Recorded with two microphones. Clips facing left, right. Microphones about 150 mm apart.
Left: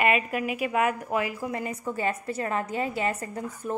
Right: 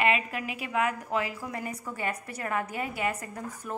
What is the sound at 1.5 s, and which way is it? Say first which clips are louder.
A woman's voice: left 5 dB; 25° left (ahead or behind).